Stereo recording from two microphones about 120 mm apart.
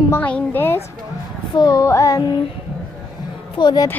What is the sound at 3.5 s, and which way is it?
Speech, 40° left (ahead or behind).